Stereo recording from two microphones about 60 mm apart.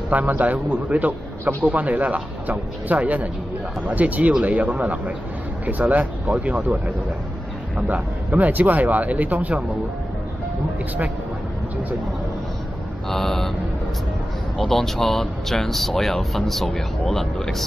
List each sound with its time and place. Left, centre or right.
0.1 s speech: right
6.4 s speech: centre
7.7 s speech: right
13.1 s mantra: centre
14.6 s speech: centre